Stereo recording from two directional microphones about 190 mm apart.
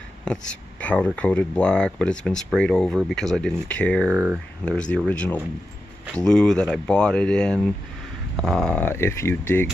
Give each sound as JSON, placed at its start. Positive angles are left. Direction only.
{"t": 0.2, "sound": "speech", "side_deg": 5}
{"t": 4.1, "sound": "speech", "side_deg": -10}
{"t": 4.6, "sound": "speech", "side_deg": 5}